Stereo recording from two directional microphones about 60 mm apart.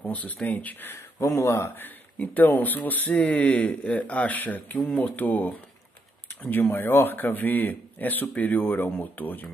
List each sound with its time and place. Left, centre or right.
0.0 s speech: left
0.9 s speech: left
1.8 s speech: left
6.5 s a man's voice: left